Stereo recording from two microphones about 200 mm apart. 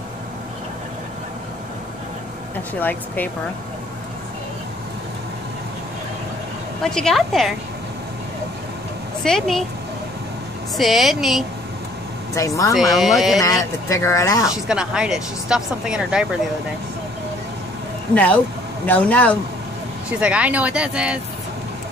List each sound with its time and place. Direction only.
2.8 s speech: 10° left (ahead or behind)
6.8 s speech: centre (ahead or behind)
9.2 s speech: centre (ahead or behind)
10.8 s speech: centre (ahead or behind)
12.4 s speech: 15° left (ahead or behind)
12.7 s speech: centre (ahead or behind)
13.4 s speech: 15° left (ahead or behind)
14.5 s speech: 5° right (ahead or behind)
18.1 s speech: 5° left (ahead or behind)
20.1 s speech: 5° right (ahead or behind)